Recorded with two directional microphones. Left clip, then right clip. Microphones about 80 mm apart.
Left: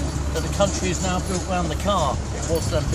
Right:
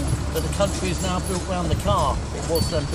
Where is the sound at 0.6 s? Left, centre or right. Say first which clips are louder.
Left 3 dB; right.